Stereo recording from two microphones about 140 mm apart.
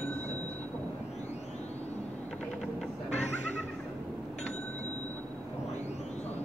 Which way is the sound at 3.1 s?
55° left (ahead or behind).